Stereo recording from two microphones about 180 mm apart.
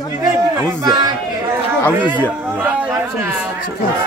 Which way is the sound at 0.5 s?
20° right (ahead or behind).